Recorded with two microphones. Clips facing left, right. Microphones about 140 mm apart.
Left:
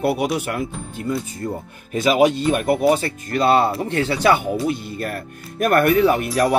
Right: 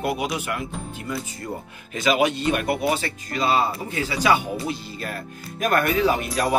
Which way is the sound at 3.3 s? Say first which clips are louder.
Left 5 dB; 60° left (ahead or behind).